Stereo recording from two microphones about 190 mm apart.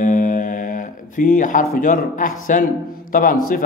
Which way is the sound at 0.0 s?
45° left (ahead or behind).